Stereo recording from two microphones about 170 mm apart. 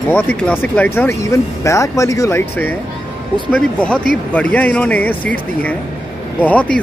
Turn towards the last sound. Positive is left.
turn(degrees=10)  # may be behind; listen again after turning